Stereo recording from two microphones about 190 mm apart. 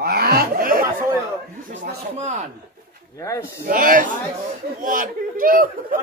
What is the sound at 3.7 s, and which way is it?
Speech, 45° right (ahead or behind).